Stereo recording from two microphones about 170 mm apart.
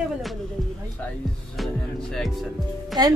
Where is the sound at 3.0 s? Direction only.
25° right (ahead or behind).